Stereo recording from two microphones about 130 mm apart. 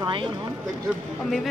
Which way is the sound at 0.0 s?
40° right (ahead or behind).